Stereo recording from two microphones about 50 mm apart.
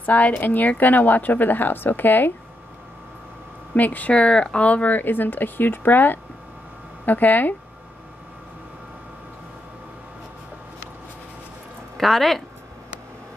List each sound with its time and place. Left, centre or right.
0.0 s a woman's voice: left
3.7 s a woman's voice: left
4.1 s a woman's voice: left
12.0 s speech: centre